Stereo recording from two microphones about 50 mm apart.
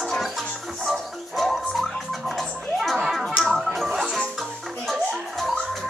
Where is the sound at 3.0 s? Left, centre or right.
Centre.